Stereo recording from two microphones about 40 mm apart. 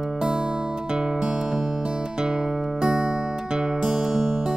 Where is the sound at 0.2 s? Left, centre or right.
Right.